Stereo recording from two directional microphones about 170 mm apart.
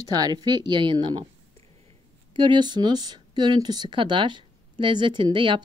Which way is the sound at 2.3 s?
25° right (ahead or behind).